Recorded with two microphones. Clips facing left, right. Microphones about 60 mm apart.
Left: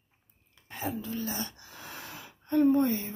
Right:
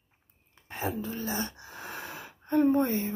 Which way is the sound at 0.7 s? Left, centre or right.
Right.